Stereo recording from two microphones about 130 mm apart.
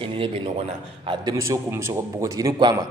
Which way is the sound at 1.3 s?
25° right (ahead or behind).